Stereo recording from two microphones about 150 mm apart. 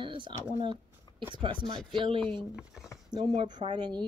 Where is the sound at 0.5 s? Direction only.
35° right (ahead or behind).